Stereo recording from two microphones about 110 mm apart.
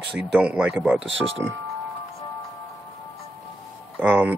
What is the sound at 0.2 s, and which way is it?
Speech, 10° right (ahead or behind).